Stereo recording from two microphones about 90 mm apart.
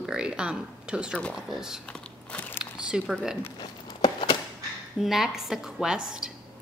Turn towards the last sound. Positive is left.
turn(degrees=-5)  # may be behind; listen again after turning